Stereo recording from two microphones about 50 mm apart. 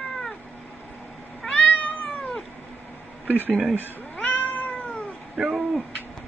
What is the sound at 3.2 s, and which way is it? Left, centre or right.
Speech, right.